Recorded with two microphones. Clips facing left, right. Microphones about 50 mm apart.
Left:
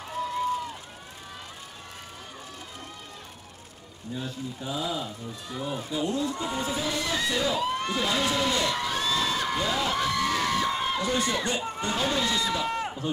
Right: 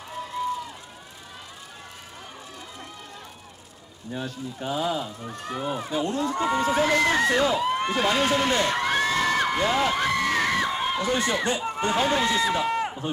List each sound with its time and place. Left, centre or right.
4.1 s speech: right
7.5 s a sound: right
7.9 s crowd: right
11.0 s a man's voice: right